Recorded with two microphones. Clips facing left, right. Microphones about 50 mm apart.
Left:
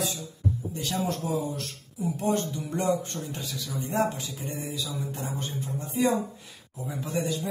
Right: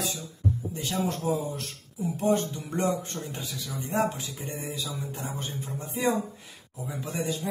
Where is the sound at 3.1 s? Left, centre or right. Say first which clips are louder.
Left 1 dB; centre.